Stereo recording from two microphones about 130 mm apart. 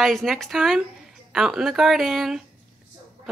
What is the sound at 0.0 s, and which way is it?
Speech, centre (ahead or behind).